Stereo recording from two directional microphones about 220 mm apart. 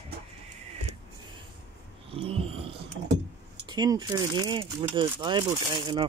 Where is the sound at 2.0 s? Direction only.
25° right (ahead or behind).